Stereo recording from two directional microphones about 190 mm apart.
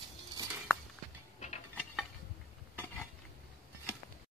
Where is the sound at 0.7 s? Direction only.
5° left (ahead or behind).